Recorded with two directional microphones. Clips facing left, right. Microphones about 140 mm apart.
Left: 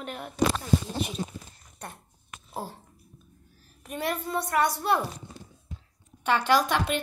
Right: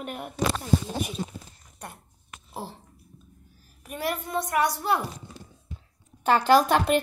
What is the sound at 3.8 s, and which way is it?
Child singing, 5° right (ahead or behind).